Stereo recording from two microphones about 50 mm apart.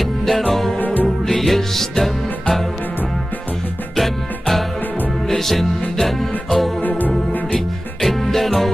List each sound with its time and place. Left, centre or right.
0.0 s music: centre
0.7 s music: left
1.0 s music: centre
3.9 s music: centre
6.8 s music: left
8.0 s music: centre